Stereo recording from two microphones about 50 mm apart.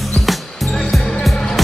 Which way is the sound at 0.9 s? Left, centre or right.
Centre.